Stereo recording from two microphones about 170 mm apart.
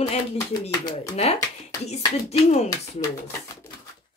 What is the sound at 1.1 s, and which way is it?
Speech, 35° left (ahead or behind).